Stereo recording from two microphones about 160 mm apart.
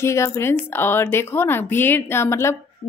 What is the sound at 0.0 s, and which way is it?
Speech, 15° left (ahead or behind).